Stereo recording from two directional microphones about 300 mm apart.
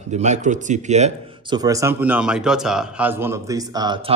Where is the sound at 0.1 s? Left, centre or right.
Right.